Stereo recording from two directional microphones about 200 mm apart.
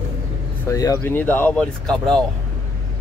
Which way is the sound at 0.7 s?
15° left (ahead or behind).